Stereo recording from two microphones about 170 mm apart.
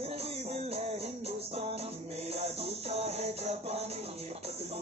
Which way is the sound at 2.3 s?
40° right (ahead or behind).